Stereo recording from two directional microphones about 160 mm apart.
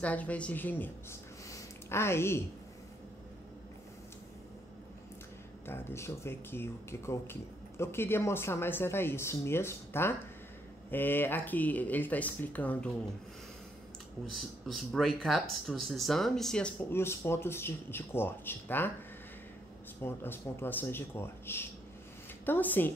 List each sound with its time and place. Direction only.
0.0 s speech: 10° left (ahead or behind)
1.5 s a sound: 15° left (ahead or behind)
5.7 s speech: 15° left (ahead or behind)
14.2 s speech: centre (ahead or behind)
20.0 s speech: 15° left (ahead or behind)